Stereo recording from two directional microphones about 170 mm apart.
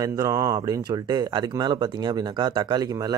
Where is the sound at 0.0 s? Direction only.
20° right (ahead or behind).